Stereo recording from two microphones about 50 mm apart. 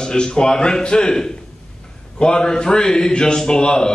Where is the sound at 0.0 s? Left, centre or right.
Centre.